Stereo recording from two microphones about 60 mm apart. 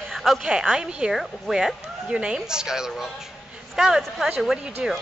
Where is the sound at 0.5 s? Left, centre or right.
Centre.